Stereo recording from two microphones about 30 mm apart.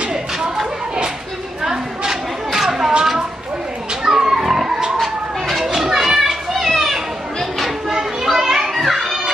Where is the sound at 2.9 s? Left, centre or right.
Right.